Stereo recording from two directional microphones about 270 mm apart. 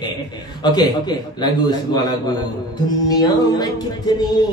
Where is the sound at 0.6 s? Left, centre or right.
Centre.